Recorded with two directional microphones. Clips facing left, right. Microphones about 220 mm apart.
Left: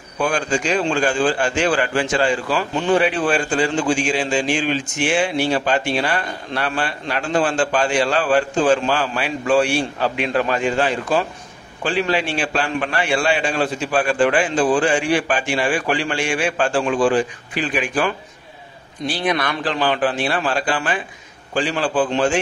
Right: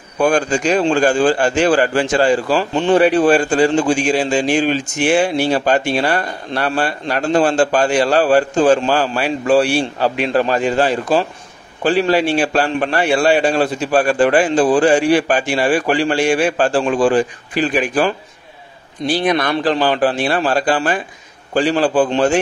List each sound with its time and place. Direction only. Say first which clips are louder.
0.2 s a man's voice: right 5 dB; 40° right (ahead or behind)
19.2 s a man's voice: right 4 dB; 40° right (ahead or behind)